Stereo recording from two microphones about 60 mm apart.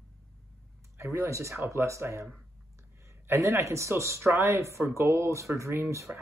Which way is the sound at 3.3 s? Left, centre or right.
Right.